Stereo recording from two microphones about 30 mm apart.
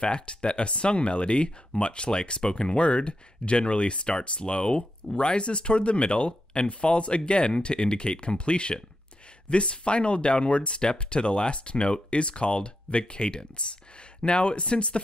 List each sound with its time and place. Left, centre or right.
0.0 s speech: left